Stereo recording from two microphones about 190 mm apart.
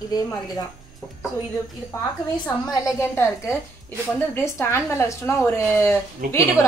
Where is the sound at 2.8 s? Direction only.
15° left (ahead or behind).